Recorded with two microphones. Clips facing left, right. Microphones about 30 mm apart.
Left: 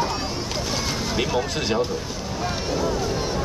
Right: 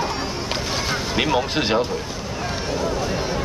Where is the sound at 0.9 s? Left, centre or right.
Right.